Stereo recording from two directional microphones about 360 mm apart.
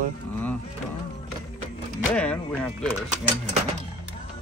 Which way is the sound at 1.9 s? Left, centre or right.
Centre.